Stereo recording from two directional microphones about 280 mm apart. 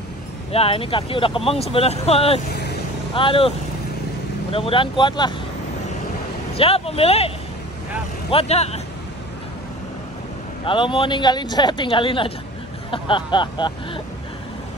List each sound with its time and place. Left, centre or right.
0.5 s speech: centre
6.5 s speech: left
10.6 s speech: centre